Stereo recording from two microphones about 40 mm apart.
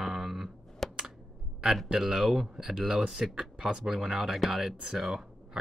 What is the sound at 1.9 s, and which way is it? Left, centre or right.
Speech, centre.